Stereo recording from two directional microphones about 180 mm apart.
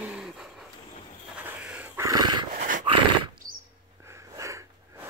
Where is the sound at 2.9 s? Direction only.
30° right (ahead or behind).